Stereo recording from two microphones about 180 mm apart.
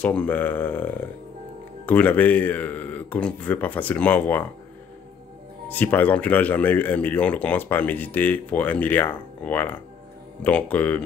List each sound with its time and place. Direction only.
0.0 s speech: 5° left (ahead or behind)
5.7 s speech: 10° left (ahead or behind)